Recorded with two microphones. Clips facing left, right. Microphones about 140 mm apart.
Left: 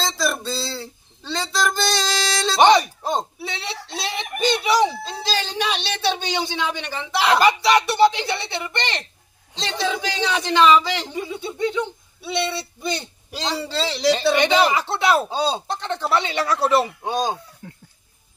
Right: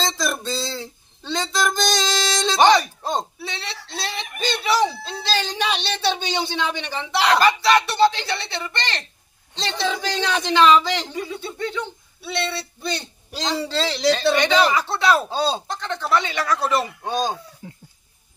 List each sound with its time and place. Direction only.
0.0 s music: 5° left (ahead or behind)
2.6 s a sound: 20° left (ahead or behind)
3.0 s a sound: 10° left (ahead or behind)
5.3 s speech: 5° left (ahead or behind)
7.3 s a man's voice: 15° left (ahead or behind)
9.6 s a man's voice: 5° left (ahead or behind)
11.1 s a man's voice: 20° left (ahead or behind)
14.3 s speech: 20° left (ahead or behind)
15.2 s a man's voice: 10° left (ahead or behind)
15.7 s speech: 25° left (ahead or behind)
17.0 s a man's voice: centre (ahead or behind)
17.6 s speech: 10° right (ahead or behind)